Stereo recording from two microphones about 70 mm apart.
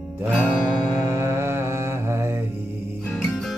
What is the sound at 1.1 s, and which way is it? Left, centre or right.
Mantra, right.